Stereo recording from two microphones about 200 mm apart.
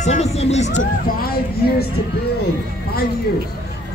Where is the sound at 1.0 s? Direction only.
50° left (ahead or behind).